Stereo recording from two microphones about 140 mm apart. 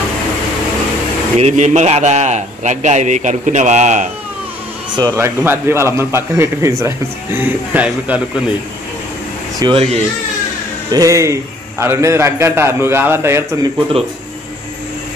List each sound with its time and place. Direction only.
1.4 s a man's voice: 55° right (ahead or behind)
5.1 s a man's voice: 15° right (ahead or behind)
9.6 s speech: 40° right (ahead or behind)
10.9 s a man's voice: 25° right (ahead or behind)